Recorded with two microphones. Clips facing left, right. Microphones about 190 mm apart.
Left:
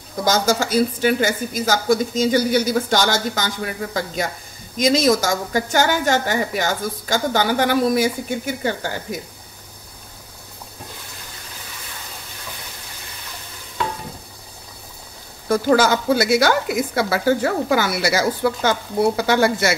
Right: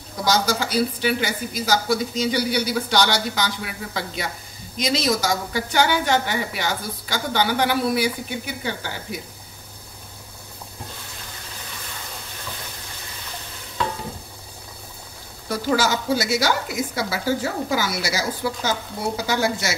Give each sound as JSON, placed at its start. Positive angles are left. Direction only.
{"t": 0.2, "sound": "a woman's voice", "side_deg": 45}
{"t": 15.4, "sound": "speech", "side_deg": 50}